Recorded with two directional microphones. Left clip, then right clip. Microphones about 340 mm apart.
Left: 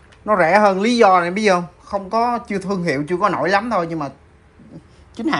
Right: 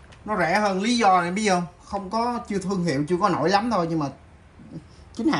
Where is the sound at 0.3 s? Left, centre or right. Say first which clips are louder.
Left 9 dB; centre.